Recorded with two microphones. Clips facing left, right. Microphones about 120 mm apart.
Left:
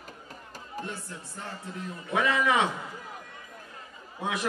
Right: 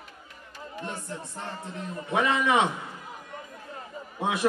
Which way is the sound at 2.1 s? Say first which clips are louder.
Right 2 dB; 25° right (ahead or behind).